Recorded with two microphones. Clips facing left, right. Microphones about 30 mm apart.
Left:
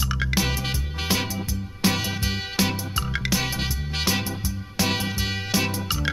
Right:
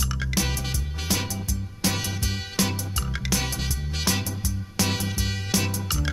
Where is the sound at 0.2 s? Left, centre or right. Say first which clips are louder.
Left 3 dB; centre.